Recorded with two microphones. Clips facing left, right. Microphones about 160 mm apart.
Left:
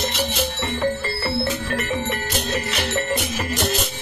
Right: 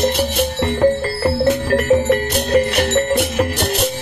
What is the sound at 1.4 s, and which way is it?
Music, 65° right (ahead or behind).